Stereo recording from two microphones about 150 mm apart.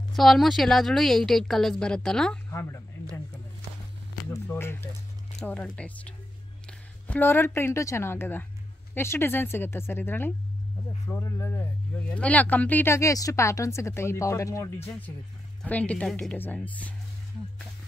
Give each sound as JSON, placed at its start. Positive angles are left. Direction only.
{"t": 0.1, "sound": "a woman's voice", "side_deg": 0}
{"t": 4.3, "sound": "a woman's voice", "side_deg": 15}